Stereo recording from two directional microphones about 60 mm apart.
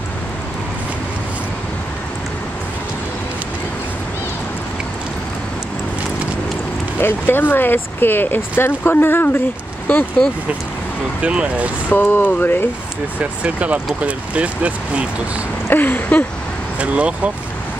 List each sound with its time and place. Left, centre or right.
7.0 s speech: left
11.2 s speech: right
11.9 s speech: left
13.2 s speech: right
15.7 s speech: left
16.8 s speech: right